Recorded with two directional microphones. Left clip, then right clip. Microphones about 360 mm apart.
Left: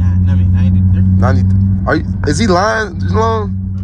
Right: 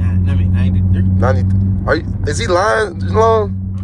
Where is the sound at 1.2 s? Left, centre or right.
Centre.